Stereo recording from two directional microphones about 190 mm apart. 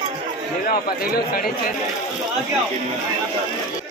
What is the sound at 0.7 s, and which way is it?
Speech, 50° left (ahead or behind).